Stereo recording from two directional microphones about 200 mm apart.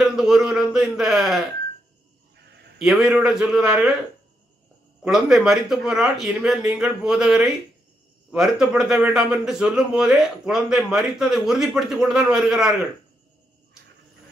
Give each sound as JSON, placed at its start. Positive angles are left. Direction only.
{"t": 0.0, "sound": "speech", "side_deg": -5}
{"t": 2.3, "sound": "a sound", "side_deg": -55}
{"t": 2.8, "sound": "speech", "side_deg": -5}
{"t": 5.0, "sound": "speech", "side_deg": -5}